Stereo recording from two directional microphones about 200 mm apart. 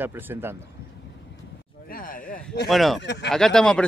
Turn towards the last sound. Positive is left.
turn(degrees=5)  # may be behind; listen again after turning